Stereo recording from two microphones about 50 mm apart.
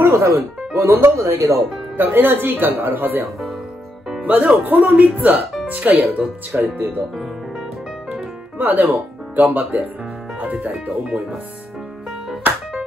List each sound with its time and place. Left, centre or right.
0.0 s speech: right
1.1 s speech: right
2.0 s speech: right
8.5 s speech: right